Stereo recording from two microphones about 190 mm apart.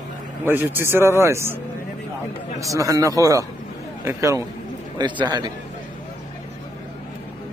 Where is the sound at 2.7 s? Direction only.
15° right (ahead or behind).